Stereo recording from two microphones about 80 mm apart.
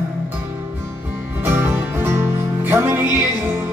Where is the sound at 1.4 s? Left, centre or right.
Right.